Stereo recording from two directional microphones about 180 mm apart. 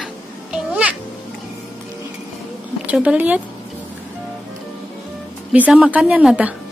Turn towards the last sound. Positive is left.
turn(degrees=-5)  # may be behind; listen again after turning